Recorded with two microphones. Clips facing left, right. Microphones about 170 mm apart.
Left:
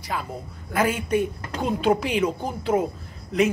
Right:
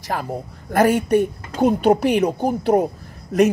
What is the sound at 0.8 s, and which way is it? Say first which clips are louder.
A woman's voice: right 7 dB; 70° right (ahead or behind).